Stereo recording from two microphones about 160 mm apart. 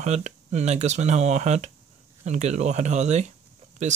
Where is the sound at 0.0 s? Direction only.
45° right (ahead or behind).